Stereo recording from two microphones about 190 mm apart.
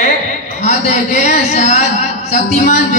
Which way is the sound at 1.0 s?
35° left (ahead or behind).